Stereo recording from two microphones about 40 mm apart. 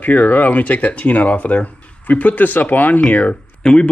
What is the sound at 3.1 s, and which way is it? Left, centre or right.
Speech, left.